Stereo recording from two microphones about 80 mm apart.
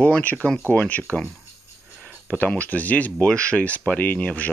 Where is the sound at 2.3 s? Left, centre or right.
Centre.